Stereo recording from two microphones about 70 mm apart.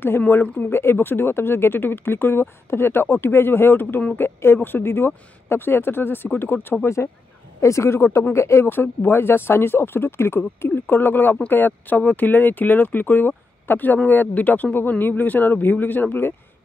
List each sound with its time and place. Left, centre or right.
0.3 s speech: left